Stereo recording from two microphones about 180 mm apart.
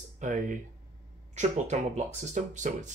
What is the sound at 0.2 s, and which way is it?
Speech, 45° right (ahead or behind).